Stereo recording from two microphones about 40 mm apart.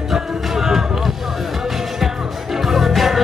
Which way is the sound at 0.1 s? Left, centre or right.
Centre.